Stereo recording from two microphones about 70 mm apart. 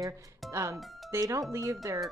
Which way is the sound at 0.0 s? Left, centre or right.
Right.